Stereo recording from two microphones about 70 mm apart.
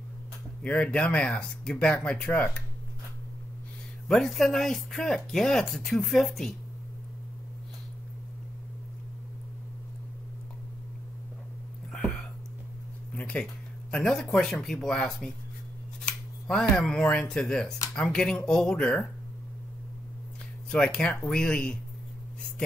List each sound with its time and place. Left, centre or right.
0.6 s speech: centre
4.1 s speech: centre
11.9 s a sound: centre
13.1 s speech: centre
20.7 s speech: centre